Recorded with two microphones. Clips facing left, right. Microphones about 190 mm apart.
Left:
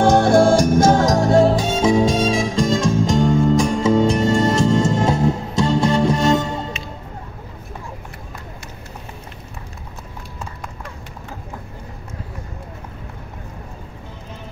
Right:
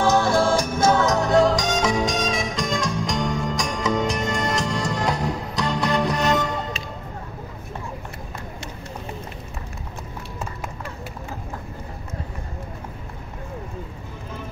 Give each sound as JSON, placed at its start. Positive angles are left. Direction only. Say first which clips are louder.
{"t": 0.0, "sound": "music", "louder": "left 6 dB", "side_deg": 55}
{"t": 1.2, "sound": "music", "louder": "left 4 dB", "side_deg": 30}